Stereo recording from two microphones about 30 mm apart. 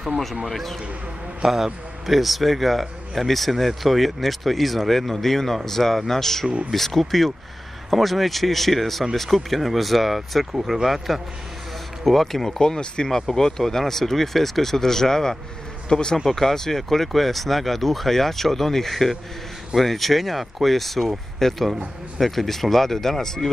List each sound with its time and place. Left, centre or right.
0.5 s a man's voice: centre
1.4 s a man's voice: centre
12.0 s a man's voice: centre